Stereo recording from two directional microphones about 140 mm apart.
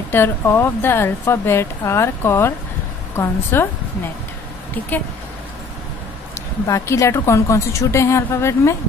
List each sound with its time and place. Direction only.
0.1 s a woman's voice: 15° left (ahead or behind)
6.7 s a woman's voice: 20° left (ahead or behind)